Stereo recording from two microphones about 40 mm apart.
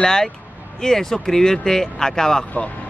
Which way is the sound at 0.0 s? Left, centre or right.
Centre.